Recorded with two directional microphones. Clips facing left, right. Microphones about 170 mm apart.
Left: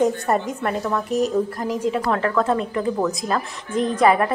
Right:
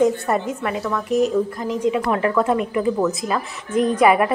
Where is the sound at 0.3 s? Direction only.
35° left (ahead or behind).